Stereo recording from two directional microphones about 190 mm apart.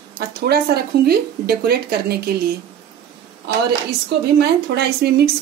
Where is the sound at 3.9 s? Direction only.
60° right (ahead or behind).